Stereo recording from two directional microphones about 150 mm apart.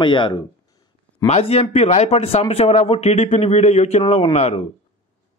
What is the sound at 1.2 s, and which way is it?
A man's voice, 45° left (ahead or behind).